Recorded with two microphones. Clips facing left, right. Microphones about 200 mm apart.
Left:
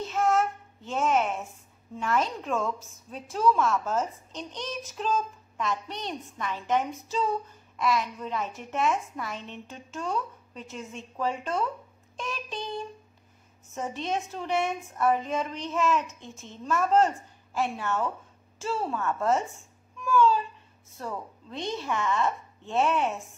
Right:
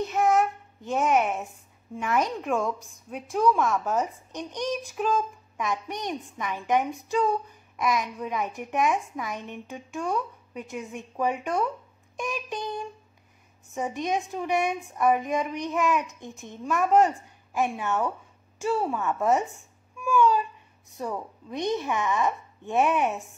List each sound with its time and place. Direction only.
0.0 s child singing: 15° right (ahead or behind)
2.0 s a woman's voice: 15° right (ahead or behind)
20.0 s babbling: 15° right (ahead or behind)
20.9 s a woman's voice: 15° right (ahead or behind)